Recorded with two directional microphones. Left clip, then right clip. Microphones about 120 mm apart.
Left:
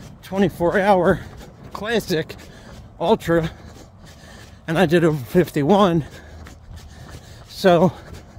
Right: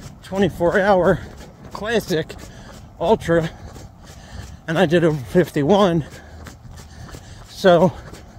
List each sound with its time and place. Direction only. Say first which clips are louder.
0.5 s speech: right 1 dB; 15° left (ahead or behind)
4.6 s speech: even; 20° left (ahead or behind)
7.6 s speech: right 2 dB; 25° left (ahead or behind)